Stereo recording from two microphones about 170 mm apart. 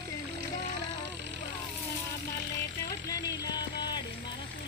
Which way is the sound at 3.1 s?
20° left (ahead or behind).